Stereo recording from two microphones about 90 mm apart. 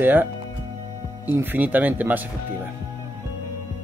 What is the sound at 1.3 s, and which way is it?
Speech, 20° right (ahead or behind).